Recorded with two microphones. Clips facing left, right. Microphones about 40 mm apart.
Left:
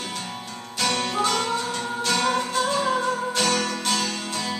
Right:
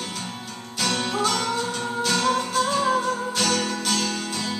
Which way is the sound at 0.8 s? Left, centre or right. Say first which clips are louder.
Even; centre.